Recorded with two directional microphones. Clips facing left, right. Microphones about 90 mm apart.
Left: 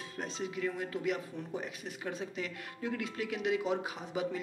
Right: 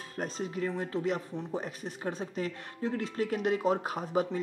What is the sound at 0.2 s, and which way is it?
Speech, 40° right (ahead or behind).